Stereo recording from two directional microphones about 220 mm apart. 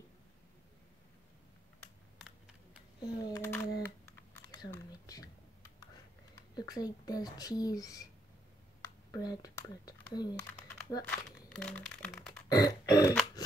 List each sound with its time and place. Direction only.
2.1 s typing: 5° right (ahead or behind)
3.0 s speech: 20° left (ahead or behind)
4.5 s a sound: 15° left (ahead or behind)
6.5 s speech: 15° left (ahead or behind)
10.7 s crumpling: 15° left (ahead or behind)
11.1 s speech: 5° left (ahead or behind)
12.4 s burping: 15° left (ahead or behind)